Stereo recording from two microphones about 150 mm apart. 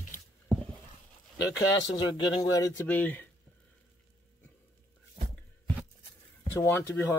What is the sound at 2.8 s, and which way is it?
Speech, 10° left (ahead or behind).